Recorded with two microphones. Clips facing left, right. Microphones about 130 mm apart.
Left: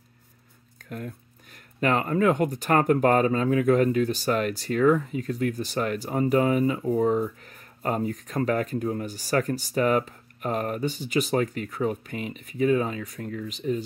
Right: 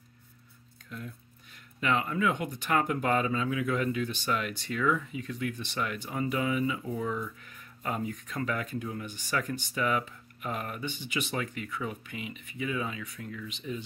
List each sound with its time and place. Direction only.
0.7 s speech: 55° left (ahead or behind)